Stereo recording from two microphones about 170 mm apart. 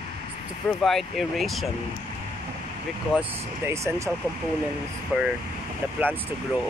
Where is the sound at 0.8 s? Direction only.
Centre (ahead or behind).